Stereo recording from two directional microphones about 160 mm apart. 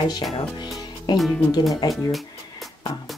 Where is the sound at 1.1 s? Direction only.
25° left (ahead or behind).